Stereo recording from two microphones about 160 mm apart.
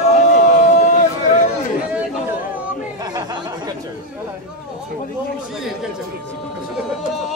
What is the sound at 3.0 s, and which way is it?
Chatter, 25° right (ahead or behind).